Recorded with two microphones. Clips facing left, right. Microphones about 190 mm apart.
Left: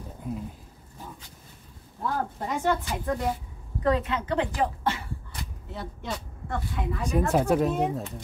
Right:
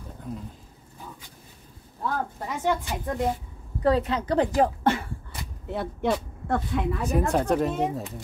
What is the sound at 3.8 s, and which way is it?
A woman's voice, 35° right (ahead or behind).